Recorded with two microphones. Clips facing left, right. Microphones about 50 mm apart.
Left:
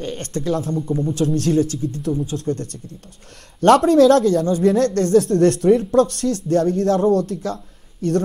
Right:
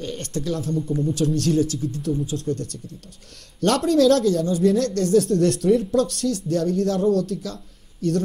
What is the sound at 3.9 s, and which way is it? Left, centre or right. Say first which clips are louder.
Speech: left 4 dB; left.